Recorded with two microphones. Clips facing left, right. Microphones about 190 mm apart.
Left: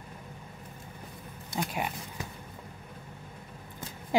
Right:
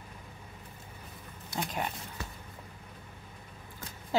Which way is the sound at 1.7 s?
10° left (ahead or behind).